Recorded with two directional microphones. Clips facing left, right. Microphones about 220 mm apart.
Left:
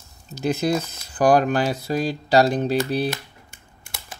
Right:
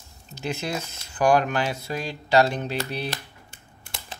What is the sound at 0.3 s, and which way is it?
Speech, 40° left (ahead or behind).